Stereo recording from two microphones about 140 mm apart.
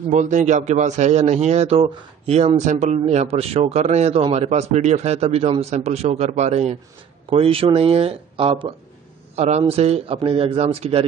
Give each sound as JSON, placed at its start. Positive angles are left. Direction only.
{"t": 0.1, "sound": "speech", "side_deg": -60}
{"t": 7.2, "sound": "speech", "side_deg": -40}
{"t": 9.3, "sound": "speech", "side_deg": -50}